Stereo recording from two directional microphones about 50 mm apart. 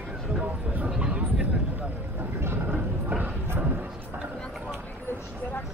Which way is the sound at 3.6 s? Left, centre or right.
Right.